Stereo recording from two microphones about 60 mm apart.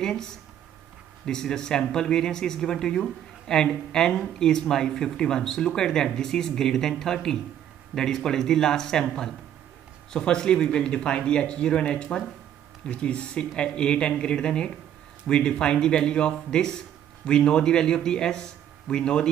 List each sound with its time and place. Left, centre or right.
0.0 s speech: centre